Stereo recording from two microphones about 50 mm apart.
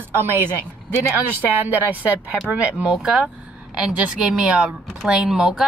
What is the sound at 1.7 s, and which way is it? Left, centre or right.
Speech, right.